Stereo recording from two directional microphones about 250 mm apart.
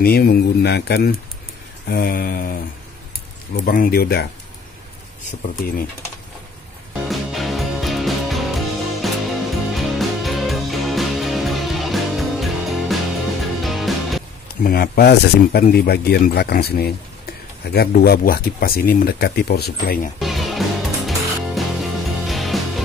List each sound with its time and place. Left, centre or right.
0.0 s speech: left
3.6 s speech: left
7.1 s music: centre
14.6 s speech: left
20.2 s music: centre